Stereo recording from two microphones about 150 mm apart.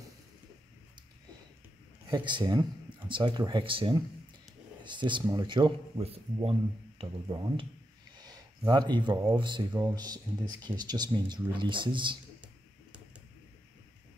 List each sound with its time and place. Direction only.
2.0 s speech: 30° right (ahead or behind)
7.0 s speech: 30° right (ahead or behind)